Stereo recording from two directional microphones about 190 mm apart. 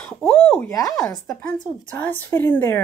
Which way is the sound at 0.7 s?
20° left (ahead or behind).